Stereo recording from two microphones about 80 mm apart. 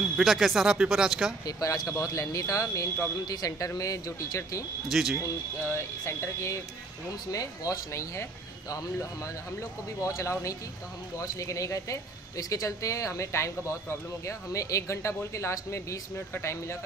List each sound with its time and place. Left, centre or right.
0.2 s speech: centre
1.4 s speech: left
4.9 s speech: centre
5.2 s speech: left
7.2 s speech: left